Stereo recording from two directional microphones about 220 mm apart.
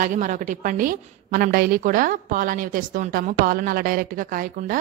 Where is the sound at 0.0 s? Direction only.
35° right (ahead or behind).